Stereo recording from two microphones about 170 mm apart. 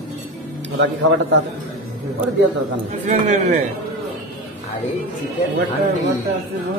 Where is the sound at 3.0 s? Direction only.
45° right (ahead or behind).